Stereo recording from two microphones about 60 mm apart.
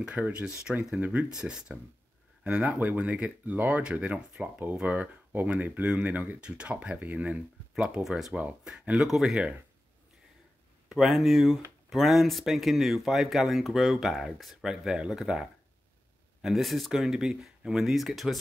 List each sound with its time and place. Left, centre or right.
0.0 s speech: centre
0.7 s speech: centre
1.3 s speech: centre
7.7 s speech: centre
8.4 s speech: centre
10.9 s speech: centre